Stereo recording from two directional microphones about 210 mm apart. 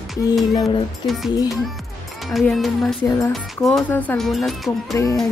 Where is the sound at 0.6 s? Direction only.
15° left (ahead or behind).